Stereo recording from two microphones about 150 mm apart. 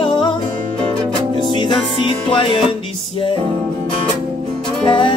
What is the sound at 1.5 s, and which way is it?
Music, 30° left (ahead or behind).